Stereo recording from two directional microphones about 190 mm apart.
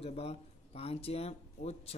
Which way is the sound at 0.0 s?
35° left (ahead or behind).